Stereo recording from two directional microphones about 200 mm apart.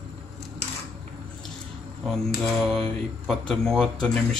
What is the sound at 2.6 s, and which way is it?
Speech, centre (ahead or behind).